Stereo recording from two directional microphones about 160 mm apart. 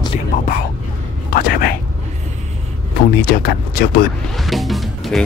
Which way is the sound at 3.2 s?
70° left (ahead or behind).